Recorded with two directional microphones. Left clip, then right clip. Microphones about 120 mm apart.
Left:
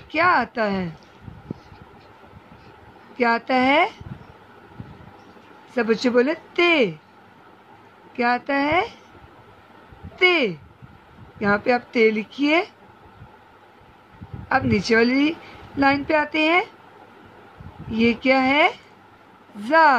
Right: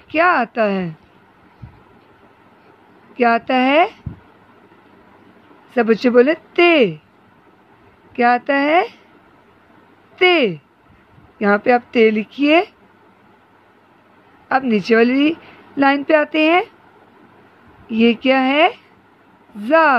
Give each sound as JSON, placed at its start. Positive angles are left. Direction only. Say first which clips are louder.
{"t": 0.1, "sound": "speech", "louder": "right 4 dB", "side_deg": -50}
{"t": 3.2, "sound": "speech", "louder": "right 4 dB", "side_deg": -50}
{"t": 5.8, "sound": "speech", "louder": "right 6 dB", "side_deg": -55}
{"t": 8.2, "sound": "speech", "louder": "right 6 dB", "side_deg": -55}
{"t": 10.1, "sound": "speech", "louder": "right 4 dB", "side_deg": -55}
{"t": 14.5, "sound": "speech", "louder": "right 4 dB", "side_deg": -50}
{"t": 17.9, "sound": "speech", "louder": "right 4 dB", "side_deg": -50}